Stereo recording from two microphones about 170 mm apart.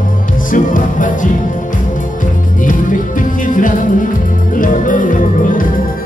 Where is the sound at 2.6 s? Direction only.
50° left (ahead or behind).